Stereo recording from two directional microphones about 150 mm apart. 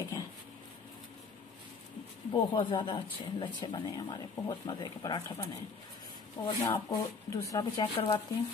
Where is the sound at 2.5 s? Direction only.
30° left (ahead or behind).